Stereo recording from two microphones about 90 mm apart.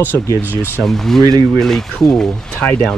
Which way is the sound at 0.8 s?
5° left (ahead or behind).